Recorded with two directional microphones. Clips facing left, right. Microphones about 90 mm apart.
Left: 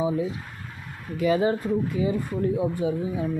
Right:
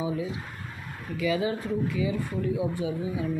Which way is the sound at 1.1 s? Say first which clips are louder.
Left 5 dB; 45° left (ahead or behind).